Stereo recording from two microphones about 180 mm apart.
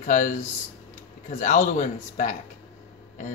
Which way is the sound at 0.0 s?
45° left (ahead or behind).